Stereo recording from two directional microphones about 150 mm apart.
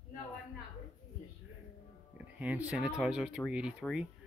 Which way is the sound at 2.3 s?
10° right (ahead or behind).